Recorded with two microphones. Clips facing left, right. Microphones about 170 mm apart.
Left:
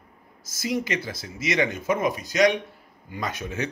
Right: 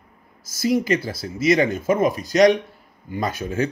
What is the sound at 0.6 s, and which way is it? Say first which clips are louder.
Speech: right 7 dB; 30° right (ahead or behind).